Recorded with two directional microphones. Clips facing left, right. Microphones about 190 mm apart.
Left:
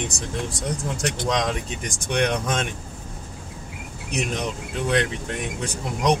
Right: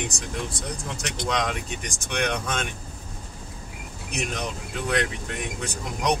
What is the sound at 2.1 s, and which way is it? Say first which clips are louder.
Speech: left 4 dB; 30° left (ahead or behind).